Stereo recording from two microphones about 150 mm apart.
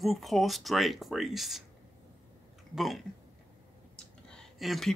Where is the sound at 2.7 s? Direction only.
Centre (ahead or behind).